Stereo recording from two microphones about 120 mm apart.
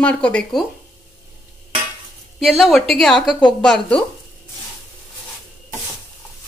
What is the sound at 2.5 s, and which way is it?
A woman's voice, centre (ahead or behind).